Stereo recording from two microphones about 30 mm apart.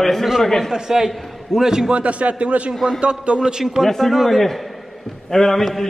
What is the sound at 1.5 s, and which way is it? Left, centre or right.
Speech, centre.